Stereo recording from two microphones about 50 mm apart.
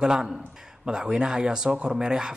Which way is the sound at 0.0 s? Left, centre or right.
Centre.